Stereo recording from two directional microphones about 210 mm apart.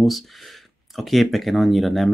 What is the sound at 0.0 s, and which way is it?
Speech, centre (ahead or behind).